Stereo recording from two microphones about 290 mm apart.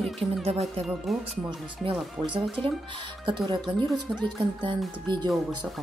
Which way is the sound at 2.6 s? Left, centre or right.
Centre.